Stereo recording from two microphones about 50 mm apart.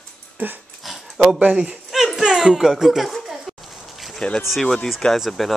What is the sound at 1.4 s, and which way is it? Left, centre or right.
Speech, right.